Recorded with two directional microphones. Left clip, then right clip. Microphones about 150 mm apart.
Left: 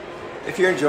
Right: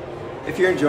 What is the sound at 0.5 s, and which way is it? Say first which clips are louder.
Speech: even; centre (ahead or behind).